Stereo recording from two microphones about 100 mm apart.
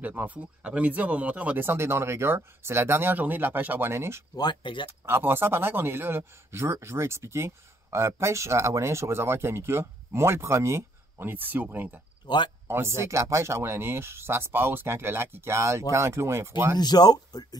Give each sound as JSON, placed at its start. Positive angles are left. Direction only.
{"t": 0.0, "sound": "speech", "side_deg": -15}
{"t": 4.4, "sound": "speech", "side_deg": 50}
{"t": 5.0, "sound": "speech", "side_deg": -25}
{"t": 12.2, "sound": "speech", "side_deg": 45}
{"t": 12.6, "sound": "speech", "side_deg": -25}
{"t": 16.7, "sound": "speech", "side_deg": 45}